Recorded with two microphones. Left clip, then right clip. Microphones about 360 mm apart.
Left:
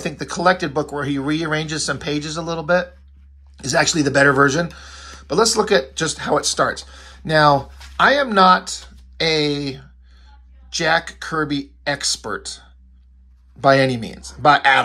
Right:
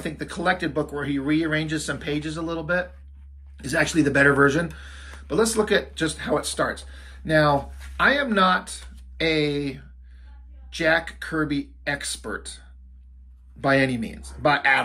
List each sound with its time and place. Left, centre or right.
0.0 s speech: centre